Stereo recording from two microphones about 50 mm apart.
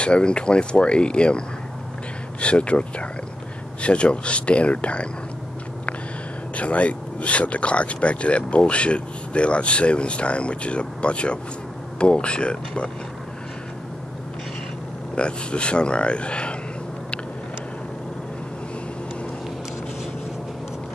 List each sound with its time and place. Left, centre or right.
0.0 s speech: centre
2.4 s speech: left
6.5 s speech: left
15.1 s speech: left